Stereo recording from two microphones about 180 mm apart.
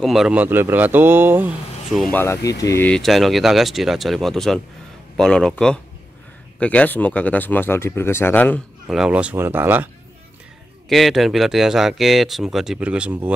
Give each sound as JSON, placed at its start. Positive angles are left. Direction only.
{"t": 0.0, "sound": "speech", "side_deg": 0}
{"t": 1.9, "sound": "speech", "side_deg": 0}
{"t": 2.1, "sound": "speech", "side_deg": 15}
{"t": 2.9, "sound": "speech", "side_deg": 0}
{"t": 8.8, "sound": "speech", "side_deg": -5}
{"t": 10.9, "sound": "speech", "side_deg": 0}